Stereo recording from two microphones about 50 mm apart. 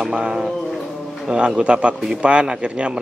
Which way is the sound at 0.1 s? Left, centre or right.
Centre.